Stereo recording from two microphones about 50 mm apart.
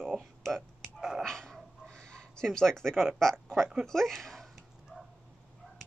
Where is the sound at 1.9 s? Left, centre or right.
Centre.